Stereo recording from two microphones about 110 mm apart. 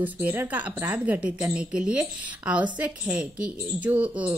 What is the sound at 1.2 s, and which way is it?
A woman's voice, 10° right (ahead or behind).